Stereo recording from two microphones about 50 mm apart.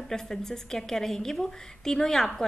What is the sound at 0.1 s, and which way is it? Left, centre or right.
A woman's voice, centre.